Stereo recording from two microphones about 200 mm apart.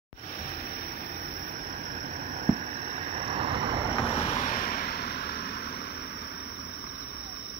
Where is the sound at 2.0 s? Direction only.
40° right (ahead or behind).